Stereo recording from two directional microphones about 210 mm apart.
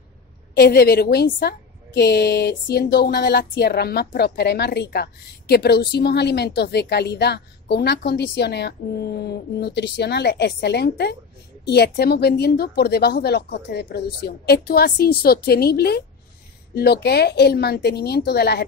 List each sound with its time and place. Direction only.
0.6 s speech: 45° left (ahead or behind)